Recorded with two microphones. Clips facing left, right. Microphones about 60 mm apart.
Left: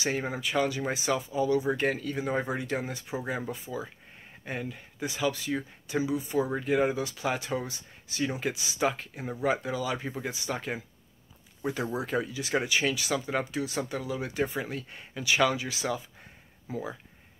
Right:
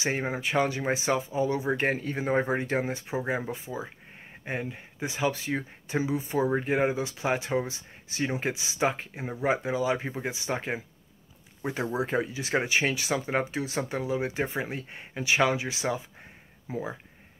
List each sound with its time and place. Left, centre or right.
0.0 s speech: right